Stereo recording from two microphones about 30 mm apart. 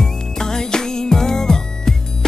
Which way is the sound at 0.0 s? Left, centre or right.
Centre.